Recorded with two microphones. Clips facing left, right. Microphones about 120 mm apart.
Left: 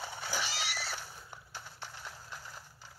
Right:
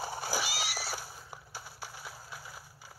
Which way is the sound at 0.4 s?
10° right (ahead or behind).